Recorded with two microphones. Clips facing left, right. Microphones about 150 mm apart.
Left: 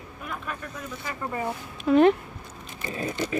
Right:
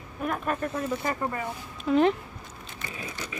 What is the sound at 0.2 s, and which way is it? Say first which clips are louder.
Vehicle: right 7 dB; 45° right (ahead or behind).